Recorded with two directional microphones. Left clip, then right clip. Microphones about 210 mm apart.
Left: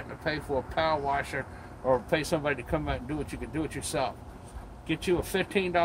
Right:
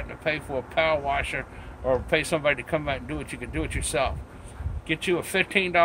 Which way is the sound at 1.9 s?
15° right (ahead or behind).